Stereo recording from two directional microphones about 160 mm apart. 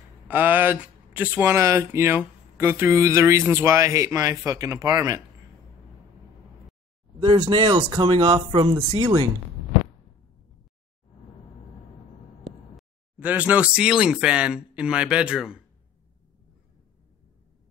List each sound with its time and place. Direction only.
0.3 s speech: 10° right (ahead or behind)
7.2 s speech: 30° right (ahead or behind)
12.7 s speech: 10° right (ahead or behind)